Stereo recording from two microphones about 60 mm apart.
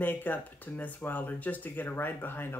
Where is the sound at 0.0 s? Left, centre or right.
Left.